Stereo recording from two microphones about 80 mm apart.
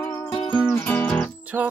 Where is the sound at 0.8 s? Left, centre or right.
Centre.